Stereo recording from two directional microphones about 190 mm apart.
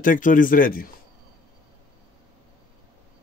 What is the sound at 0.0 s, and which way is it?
Speech, 45° left (ahead or behind).